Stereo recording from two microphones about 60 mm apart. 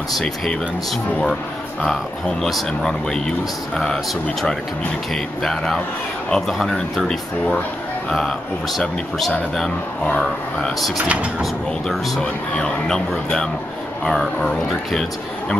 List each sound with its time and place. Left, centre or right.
1.9 s speech: centre
7.1 s speech: centre
10.0 s speech: centre
11.1 s speech: right
12.2 s speech: centre